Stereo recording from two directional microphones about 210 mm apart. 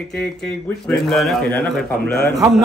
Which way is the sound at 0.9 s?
Centre (ahead or behind).